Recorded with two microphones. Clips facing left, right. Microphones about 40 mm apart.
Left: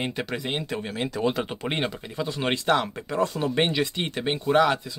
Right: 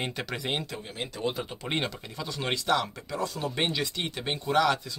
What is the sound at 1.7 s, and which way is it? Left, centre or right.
Speech, centre.